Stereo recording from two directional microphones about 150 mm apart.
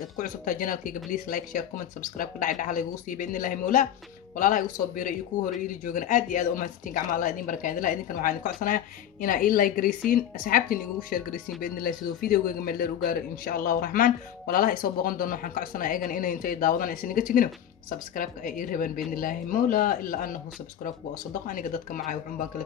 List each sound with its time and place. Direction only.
0.2 s a man's voice: 65° left (ahead or behind)
21.5 s speech: 65° left (ahead or behind)